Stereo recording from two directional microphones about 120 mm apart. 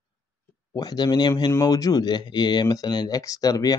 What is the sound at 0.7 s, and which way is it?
Speech, 35° left (ahead or behind).